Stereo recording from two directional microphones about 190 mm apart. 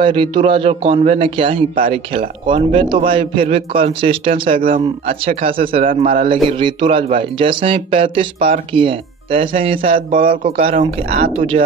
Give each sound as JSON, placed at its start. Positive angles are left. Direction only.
{"t": 0.0, "sound": "speech", "side_deg": -25}
{"t": 4.5, "sound": "speech", "side_deg": -45}
{"t": 5.0, "sound": "speech", "side_deg": -30}
{"t": 6.0, "sound": "speech", "side_deg": -45}
{"t": 6.3, "sound": "speech", "side_deg": -25}
{"t": 9.9, "sound": "speech", "side_deg": -45}
{"t": 10.7, "sound": "speech", "side_deg": -30}